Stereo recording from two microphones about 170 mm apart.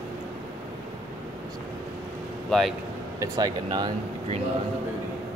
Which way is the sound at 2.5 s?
Centre (ahead or behind).